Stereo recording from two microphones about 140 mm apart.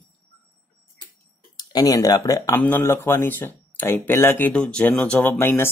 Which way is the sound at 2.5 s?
15° left (ahead or behind).